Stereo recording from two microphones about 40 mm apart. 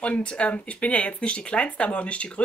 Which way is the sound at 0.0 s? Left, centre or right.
Left.